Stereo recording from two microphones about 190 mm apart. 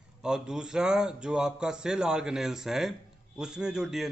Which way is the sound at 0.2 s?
5° right (ahead or behind).